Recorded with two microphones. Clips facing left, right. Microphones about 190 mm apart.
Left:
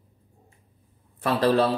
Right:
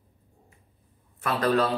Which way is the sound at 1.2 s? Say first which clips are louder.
Left 3 dB; 30° left (ahead or behind).